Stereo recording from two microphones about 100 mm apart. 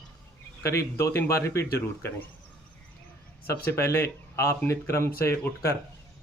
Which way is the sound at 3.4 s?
25° left (ahead or behind).